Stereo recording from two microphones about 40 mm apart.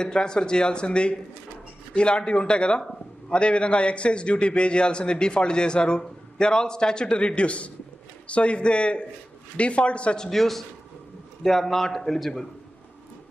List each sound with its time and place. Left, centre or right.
0.0 s a man's voice: centre
10.1 s a man's voice: centre